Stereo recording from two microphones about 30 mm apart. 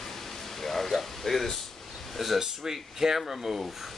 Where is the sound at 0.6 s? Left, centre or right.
Centre.